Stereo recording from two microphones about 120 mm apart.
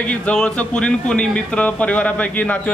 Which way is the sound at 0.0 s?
10° left (ahead or behind).